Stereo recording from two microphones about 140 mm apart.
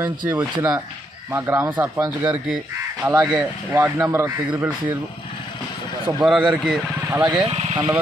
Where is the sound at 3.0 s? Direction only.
30° right (ahead or behind).